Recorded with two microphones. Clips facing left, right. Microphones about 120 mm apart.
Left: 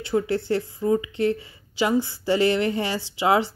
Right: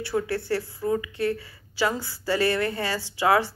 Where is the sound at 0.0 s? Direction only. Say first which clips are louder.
Left 3 dB; 20° left (ahead or behind).